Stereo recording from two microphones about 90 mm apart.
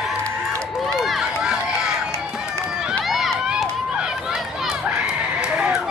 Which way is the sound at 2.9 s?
Centre (ahead or behind).